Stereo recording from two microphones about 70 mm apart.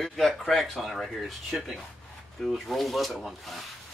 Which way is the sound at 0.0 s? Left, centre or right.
Centre.